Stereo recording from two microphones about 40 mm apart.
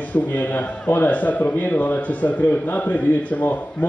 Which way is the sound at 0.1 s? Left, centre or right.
Left.